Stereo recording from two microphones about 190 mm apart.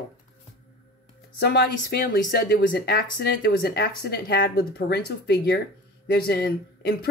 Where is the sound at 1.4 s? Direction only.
55° left (ahead or behind).